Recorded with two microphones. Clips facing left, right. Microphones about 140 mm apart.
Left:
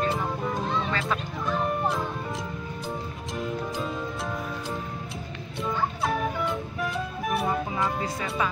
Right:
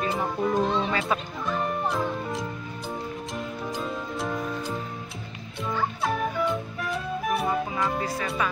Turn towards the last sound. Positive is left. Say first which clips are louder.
# even
turn(degrees=0)  # may be behind; listen again after turning